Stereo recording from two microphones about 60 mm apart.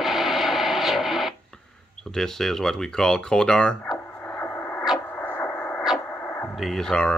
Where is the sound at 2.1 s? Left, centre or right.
Centre.